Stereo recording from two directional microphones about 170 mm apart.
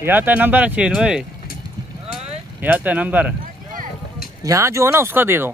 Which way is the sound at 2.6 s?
10° right (ahead or behind).